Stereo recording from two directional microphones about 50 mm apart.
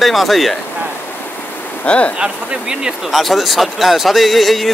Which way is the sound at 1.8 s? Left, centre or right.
Left.